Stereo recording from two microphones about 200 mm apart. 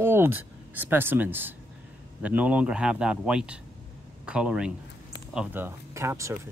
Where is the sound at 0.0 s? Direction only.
10° right (ahead or behind).